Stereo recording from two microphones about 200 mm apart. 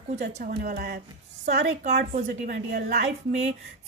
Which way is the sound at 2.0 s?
45° right (ahead or behind).